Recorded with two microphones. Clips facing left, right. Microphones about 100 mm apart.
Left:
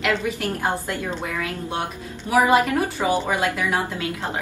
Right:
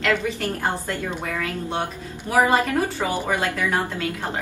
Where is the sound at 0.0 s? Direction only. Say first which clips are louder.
Even; 15° left (ahead or behind).